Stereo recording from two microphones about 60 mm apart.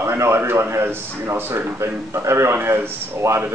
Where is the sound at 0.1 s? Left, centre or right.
Right.